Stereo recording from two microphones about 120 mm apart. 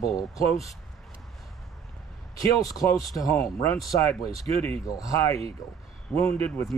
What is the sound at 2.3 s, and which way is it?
A man's voice, 30° left (ahead or behind).